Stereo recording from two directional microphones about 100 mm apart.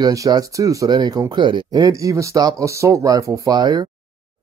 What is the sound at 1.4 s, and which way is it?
Speech, 55° right (ahead or behind).